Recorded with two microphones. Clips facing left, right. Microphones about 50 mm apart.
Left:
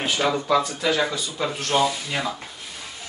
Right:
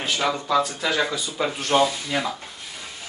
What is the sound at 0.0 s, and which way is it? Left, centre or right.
A man's voice, centre.